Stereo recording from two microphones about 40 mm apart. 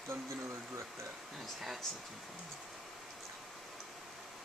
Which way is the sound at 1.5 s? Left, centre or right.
Centre.